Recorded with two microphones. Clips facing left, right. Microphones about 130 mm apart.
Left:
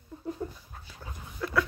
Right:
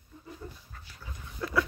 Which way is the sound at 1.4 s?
Centre (ahead or behind).